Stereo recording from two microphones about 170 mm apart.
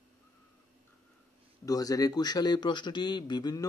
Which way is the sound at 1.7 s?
20° left (ahead or behind).